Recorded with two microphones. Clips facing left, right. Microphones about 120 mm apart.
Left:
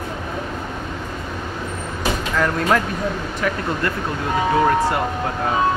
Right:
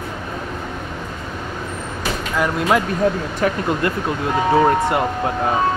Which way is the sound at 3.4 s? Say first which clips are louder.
Right 4 dB; 35° right (ahead or behind).